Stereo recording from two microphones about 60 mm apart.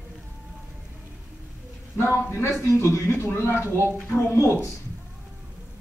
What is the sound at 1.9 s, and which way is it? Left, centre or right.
A man's voice, left.